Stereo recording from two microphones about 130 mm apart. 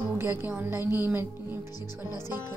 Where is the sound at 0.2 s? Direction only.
15° right (ahead or behind).